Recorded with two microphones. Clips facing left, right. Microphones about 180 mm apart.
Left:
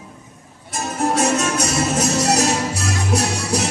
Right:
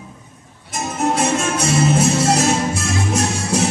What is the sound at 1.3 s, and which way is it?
Music, 40° left (ahead or behind).